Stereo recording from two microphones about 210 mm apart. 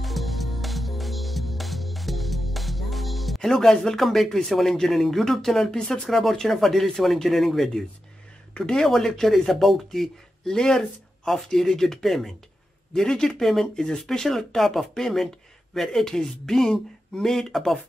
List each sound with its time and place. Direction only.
0.0 s music: centre (ahead or behind)
8.5 s speech: 5° left (ahead or behind)